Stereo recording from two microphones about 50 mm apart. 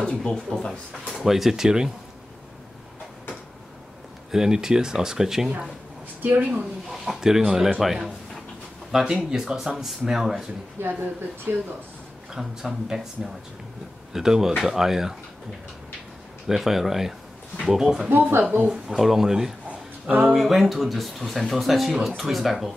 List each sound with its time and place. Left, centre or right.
0.0 s speech: centre
0.5 s speech: centre
4.3 s speech: centre
6.9 s speech: centre
10.8 s speech: right
11.5 s speech: right
12.3 s speech: centre
16.4 s speech: centre
18.0 s speech: right
18.7 s speech: centre
19.7 s a sound: right
20.3 s speech: centre